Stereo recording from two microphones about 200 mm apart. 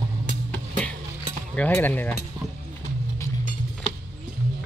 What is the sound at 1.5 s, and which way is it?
Speech, 5° left (ahead or behind).